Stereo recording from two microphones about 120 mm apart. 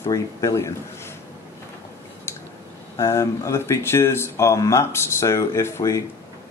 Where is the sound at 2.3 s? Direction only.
20° left (ahead or behind).